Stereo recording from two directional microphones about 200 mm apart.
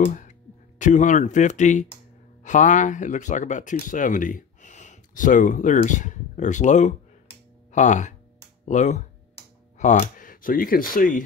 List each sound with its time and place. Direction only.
0.7 s speech: 40° left (ahead or behind)